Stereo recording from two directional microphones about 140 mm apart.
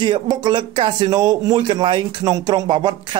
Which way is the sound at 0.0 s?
35° right (ahead or behind).